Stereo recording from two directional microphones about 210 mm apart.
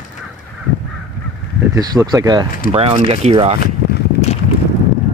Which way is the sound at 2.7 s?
25° right (ahead or behind).